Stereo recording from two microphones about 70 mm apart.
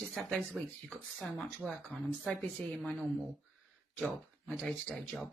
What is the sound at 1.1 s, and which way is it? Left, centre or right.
Speech, centre.